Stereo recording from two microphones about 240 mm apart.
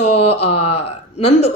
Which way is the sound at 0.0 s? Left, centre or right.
Left.